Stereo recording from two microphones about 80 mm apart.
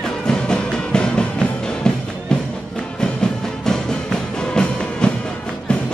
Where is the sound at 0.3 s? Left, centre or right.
Centre.